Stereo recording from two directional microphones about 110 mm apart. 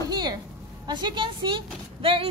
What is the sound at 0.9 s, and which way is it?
A woman's voice, 40° right (ahead or behind).